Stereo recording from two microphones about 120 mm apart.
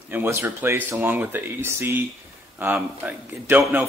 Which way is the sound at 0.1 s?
20° right (ahead or behind).